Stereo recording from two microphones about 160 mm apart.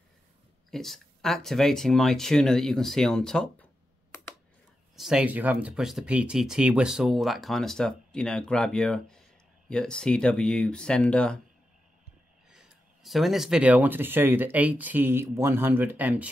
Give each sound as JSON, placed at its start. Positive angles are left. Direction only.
{"t": 0.7, "sound": "speech", "side_deg": 0}
{"t": 4.9, "sound": "speech", "side_deg": -5}
{"t": 12.4, "sound": "speech", "side_deg": -5}